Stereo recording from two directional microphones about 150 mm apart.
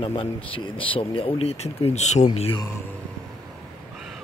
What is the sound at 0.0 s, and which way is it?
Speech, 35° left (ahead or behind).